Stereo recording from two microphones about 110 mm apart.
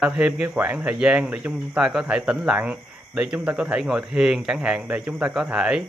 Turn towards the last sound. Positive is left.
turn(degrees=-10)  # may be behind; listen again after turning